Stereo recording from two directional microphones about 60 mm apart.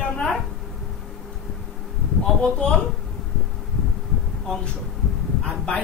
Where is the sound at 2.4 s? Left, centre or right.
Centre.